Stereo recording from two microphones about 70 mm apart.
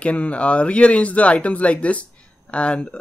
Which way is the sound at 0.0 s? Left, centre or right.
Centre.